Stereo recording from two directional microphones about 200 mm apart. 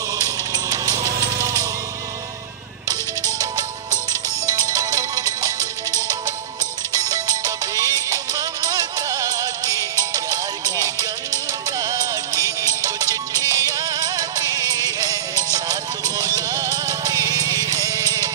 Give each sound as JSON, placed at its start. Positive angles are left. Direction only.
{"t": 0.2, "sound": "music", "side_deg": -20}
{"t": 3.3, "sound": "music", "side_deg": -20}